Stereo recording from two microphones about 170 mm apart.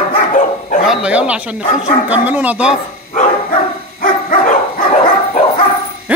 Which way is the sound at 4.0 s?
50° left (ahead or behind).